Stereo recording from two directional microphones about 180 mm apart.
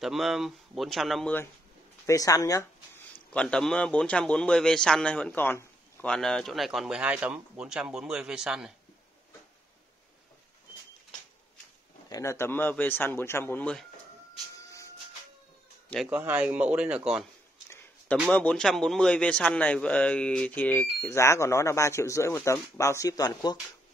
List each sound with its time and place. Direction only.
0.0 s a man's voice: centre (ahead or behind)
2.0 s speech: 20° left (ahead or behind)
3.3 s a man's voice: 5° left (ahead or behind)
12.1 s a man's voice: 15° left (ahead or behind)
14.5 s a sound: 15° left (ahead or behind)
16.1 s speech: 10° right (ahead or behind)
18.3 s a man's voice: 5° left (ahead or behind); by 23.6 s 20° left (ahead or behind)